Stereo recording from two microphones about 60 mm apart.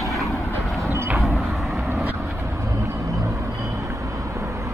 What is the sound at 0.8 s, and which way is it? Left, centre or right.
Vehicle, right.